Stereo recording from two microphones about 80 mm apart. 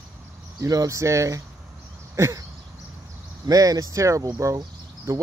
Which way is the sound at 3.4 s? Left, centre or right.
Right.